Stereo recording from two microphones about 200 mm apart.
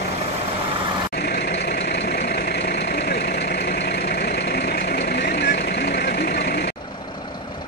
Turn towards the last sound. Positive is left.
turn(degrees=55)  # may be behind; listen again after turning